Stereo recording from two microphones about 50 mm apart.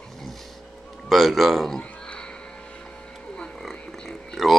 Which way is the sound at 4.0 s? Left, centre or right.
Centre.